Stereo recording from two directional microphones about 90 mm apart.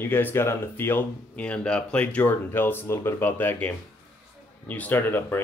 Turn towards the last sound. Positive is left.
turn(degrees=25)  # may be behind; listen again after turning